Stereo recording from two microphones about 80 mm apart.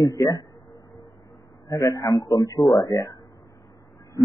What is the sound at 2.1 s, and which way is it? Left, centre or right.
A man's voice, left.